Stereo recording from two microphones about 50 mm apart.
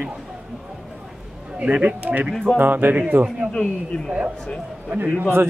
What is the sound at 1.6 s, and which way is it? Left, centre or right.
Speech, right.